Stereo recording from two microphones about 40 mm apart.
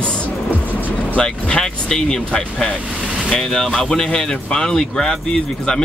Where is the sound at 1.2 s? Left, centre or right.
Left.